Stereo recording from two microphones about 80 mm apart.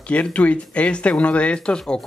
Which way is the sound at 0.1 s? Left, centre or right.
Centre.